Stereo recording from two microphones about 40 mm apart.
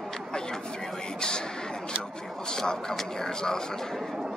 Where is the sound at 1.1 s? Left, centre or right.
Left.